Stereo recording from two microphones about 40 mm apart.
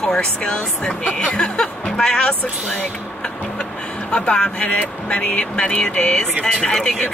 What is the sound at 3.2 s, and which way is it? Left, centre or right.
Music, left.